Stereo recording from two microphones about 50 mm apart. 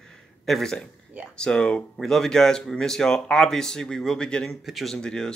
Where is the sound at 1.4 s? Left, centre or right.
Centre.